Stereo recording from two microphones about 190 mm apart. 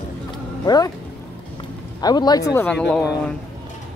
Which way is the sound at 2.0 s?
20° left (ahead or behind).